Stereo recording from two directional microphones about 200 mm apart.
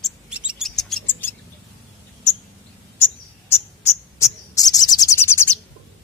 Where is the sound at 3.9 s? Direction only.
15° left (ahead or behind).